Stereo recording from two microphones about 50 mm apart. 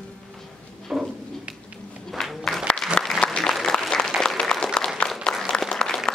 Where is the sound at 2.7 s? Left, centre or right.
Left.